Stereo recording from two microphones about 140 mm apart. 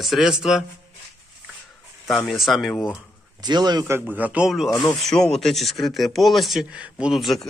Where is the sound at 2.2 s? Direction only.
Centre (ahead or behind).